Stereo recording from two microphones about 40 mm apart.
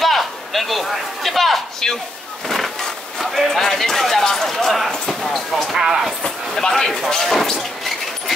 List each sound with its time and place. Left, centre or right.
0.0 s a man's voice: centre
2.4 s a sound: centre
3.2 s speech: centre
5.2 s basketball bounce: centre
5.8 s speech: centre
6.2 s speech: centre